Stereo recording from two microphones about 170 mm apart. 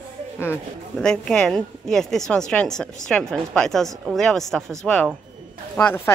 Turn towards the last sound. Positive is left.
turn(degrees=10)  # may be behind; listen again after turning